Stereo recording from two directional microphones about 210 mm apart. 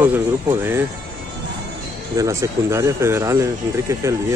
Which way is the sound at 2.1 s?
15° right (ahead or behind).